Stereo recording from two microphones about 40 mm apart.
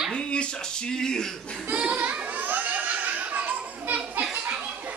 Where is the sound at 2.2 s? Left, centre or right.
Right.